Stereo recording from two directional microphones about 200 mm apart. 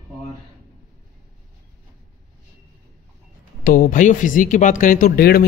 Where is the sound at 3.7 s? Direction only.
40° left (ahead or behind).